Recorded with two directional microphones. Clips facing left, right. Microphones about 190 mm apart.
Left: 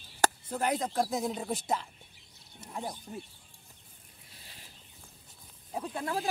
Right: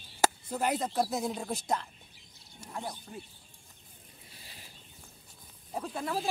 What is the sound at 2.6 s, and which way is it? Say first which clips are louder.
Speech: left 1 dB; 20° left (ahead or behind).